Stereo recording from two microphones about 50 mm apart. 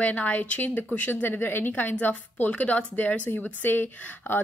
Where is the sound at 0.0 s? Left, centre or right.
Left.